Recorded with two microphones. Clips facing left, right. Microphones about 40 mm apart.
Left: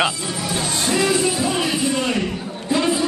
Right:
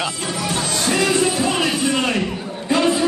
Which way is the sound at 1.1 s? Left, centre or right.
Right.